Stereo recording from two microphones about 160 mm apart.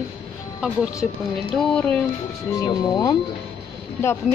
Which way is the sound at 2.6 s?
20° left (ahead or behind).